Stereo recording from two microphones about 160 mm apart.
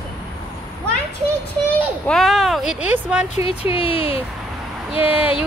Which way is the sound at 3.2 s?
40° left (ahead or behind).